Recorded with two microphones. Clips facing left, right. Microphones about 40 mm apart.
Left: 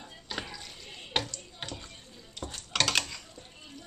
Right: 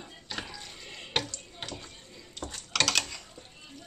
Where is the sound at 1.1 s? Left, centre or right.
Centre.